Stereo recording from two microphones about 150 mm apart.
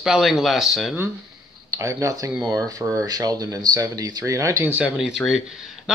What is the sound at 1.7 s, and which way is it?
Speech, 20° right (ahead or behind).